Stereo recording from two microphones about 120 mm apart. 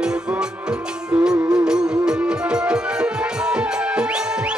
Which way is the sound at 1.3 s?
35° right (ahead or behind).